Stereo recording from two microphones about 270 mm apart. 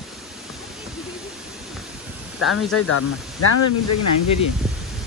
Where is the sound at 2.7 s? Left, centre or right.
Left.